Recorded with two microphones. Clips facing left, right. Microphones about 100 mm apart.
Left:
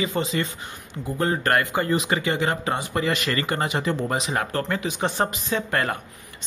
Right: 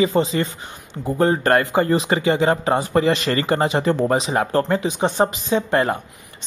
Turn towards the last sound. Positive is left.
turn(degrees=-20)  # may be behind; listen again after turning